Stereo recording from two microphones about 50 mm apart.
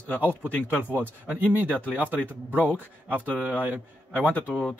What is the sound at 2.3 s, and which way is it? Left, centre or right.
A man's voice, right.